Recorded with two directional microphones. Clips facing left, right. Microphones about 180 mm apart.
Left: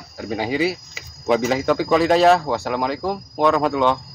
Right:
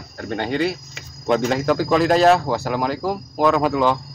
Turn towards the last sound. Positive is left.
turn(degrees=0)  # may be behind; listen again after turning